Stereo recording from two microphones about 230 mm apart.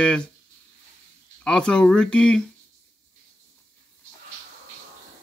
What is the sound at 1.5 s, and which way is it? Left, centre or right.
Speech, centre.